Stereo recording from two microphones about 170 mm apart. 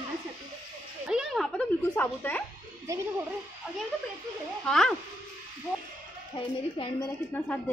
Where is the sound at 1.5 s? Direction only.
10° left (ahead or behind).